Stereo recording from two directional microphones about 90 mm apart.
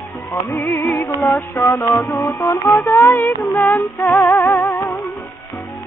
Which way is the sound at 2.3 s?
35° left (ahead or behind).